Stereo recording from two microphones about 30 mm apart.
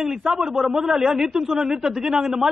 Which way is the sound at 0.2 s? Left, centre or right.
Centre.